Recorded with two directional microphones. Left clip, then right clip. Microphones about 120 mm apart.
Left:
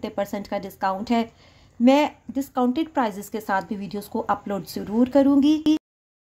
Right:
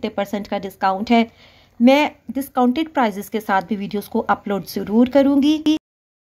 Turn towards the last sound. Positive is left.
turn(degrees=-15)  # may be behind; listen again after turning